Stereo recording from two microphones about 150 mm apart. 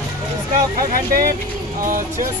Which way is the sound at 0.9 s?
70° right (ahead or behind).